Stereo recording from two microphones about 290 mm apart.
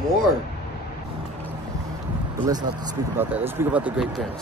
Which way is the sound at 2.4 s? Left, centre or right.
Centre.